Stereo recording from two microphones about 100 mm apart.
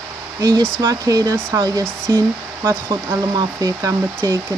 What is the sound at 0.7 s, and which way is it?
Speech, 40° right (ahead or behind).